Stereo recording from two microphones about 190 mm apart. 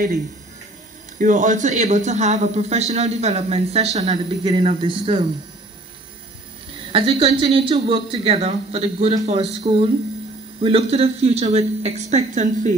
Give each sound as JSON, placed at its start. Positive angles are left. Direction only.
{"t": 1.1, "sound": "speech", "side_deg": -40}
{"t": 6.9, "sound": "speech", "side_deg": -30}